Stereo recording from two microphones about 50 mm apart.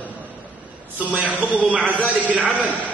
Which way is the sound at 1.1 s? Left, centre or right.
Right.